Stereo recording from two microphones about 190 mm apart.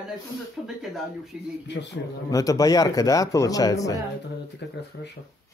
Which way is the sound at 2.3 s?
20° left (ahead or behind).